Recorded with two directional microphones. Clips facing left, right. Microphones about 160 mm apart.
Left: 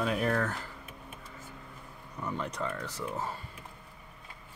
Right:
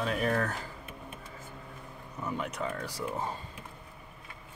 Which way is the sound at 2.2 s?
5° right (ahead or behind).